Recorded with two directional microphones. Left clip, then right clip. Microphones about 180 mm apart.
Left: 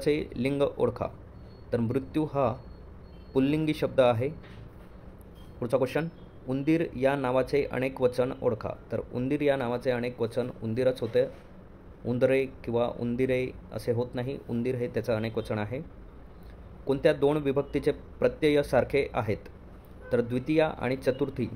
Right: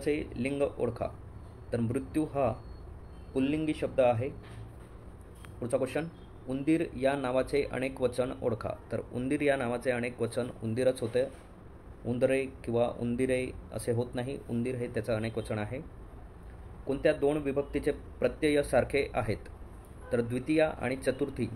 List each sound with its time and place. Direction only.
0.0 s speech: 25° left (ahead or behind)
5.6 s a man's voice: 20° left (ahead or behind)
16.8 s a man's voice: 20° left (ahead or behind)